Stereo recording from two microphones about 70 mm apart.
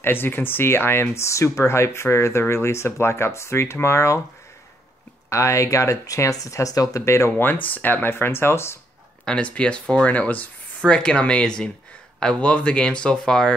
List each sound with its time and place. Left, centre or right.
0.0 s speech: left
5.3 s speech: left
7.1 s speech: left
7.4 s speech: left
9.2 s speech: centre